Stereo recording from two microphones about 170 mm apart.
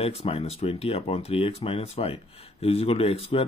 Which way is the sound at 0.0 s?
35° left (ahead or behind).